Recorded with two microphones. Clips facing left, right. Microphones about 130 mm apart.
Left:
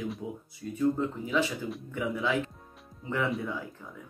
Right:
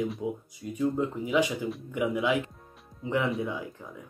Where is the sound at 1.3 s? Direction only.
15° right (ahead or behind).